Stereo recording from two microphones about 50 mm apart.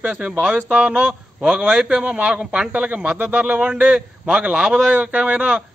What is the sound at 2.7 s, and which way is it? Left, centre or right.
A man's voice, right.